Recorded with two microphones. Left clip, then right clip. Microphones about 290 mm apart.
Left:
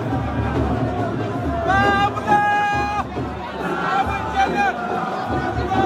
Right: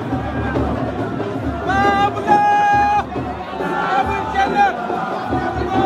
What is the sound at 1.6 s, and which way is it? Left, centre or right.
Music, right.